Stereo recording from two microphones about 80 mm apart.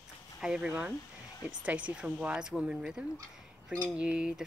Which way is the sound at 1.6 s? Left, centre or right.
Centre.